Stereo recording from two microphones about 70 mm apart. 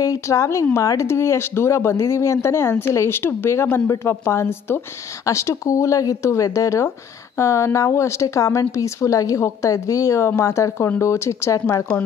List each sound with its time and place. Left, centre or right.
0.0 s speech: left
5.2 s speech: left